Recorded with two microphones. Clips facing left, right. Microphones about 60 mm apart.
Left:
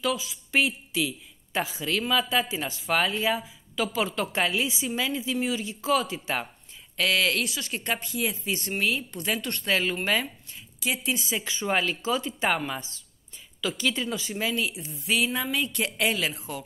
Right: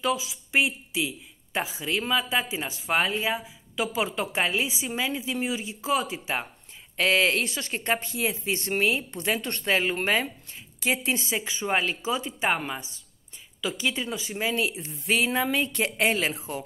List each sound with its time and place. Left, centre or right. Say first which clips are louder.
0.0 s a woman's voice: right 1 dB; centre; by 11.4 s right
11.4 s a woman's voice: left 1 dB; centre